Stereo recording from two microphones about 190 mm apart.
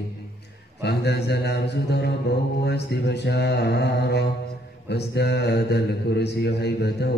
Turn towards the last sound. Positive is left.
turn(degrees=60)  # may be behind; listen again after turning